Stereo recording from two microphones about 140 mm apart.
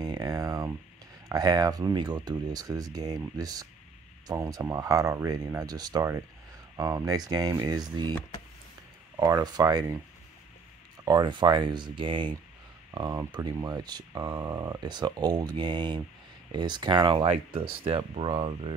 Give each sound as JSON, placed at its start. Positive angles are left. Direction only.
{"t": 0.0, "sound": "a sound", "side_deg": -25}
{"t": 1.3, "sound": "speech", "side_deg": -30}
{"t": 9.1, "sound": "speech", "side_deg": -30}
{"t": 11.1, "sound": "speech", "side_deg": -30}